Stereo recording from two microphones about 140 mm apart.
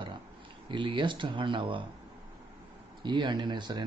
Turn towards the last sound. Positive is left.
turn(degrees=-30)  # may be behind; listen again after turning